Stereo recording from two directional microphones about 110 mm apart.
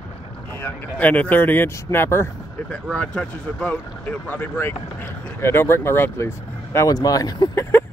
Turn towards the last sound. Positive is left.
turn(degrees=40)  # may be behind; listen again after turning